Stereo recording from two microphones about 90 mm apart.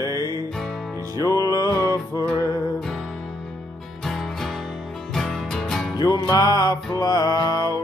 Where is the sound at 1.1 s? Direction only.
40° left (ahead or behind).